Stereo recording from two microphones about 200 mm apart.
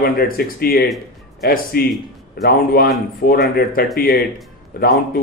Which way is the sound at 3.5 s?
50° left (ahead or behind).